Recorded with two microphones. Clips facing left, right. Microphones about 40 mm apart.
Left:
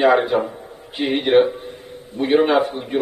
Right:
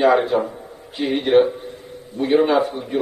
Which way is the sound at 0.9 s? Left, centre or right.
Left.